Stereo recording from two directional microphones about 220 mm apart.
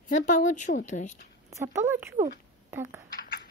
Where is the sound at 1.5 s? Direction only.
15° right (ahead or behind).